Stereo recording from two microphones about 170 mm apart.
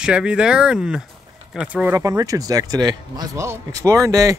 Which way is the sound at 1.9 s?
20° right (ahead or behind).